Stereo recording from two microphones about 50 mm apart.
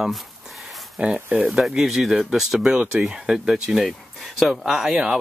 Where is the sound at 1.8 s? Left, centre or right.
Centre.